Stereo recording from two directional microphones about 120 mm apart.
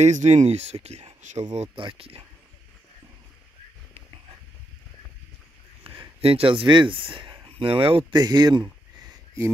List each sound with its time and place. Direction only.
0.0 s speech: 75° right (ahead or behind)
1.8 s speech: 50° right (ahead or behind)
5.9 s speech: 50° right (ahead or behind)